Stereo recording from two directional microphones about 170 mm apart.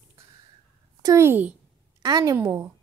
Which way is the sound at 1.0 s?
15° right (ahead or behind).